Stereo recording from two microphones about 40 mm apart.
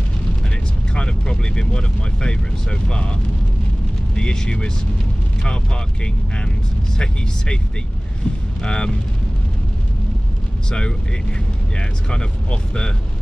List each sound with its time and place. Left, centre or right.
0.9 s speech: left
4.1 s speech: left
8.6 s speech: left
12.1 s speech: left